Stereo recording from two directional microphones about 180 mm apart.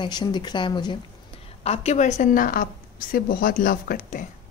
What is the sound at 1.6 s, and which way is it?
A woman's voice, 35° left (ahead or behind).